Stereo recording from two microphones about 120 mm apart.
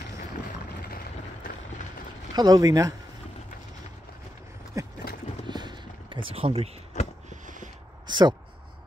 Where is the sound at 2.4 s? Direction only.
30° right (ahead or behind).